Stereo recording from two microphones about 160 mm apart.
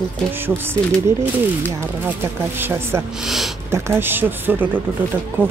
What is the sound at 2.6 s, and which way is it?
Speech, 15° right (ahead or behind).